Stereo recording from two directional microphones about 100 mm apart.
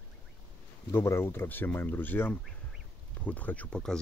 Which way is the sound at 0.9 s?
25° left (ahead or behind).